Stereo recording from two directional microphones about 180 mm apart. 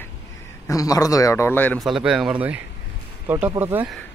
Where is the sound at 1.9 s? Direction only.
5° right (ahead or behind).